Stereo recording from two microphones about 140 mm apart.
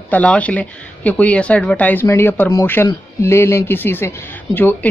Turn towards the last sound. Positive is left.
turn(degrees=15)  # may be behind; listen again after turning